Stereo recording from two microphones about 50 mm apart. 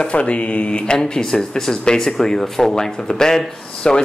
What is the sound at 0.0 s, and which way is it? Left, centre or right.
Speech, left.